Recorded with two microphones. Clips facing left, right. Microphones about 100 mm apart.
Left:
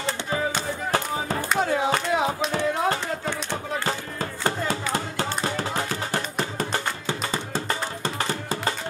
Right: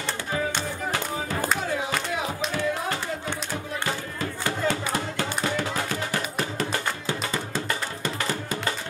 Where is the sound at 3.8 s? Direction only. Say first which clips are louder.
Left 1 dB; 35° left (ahead or behind).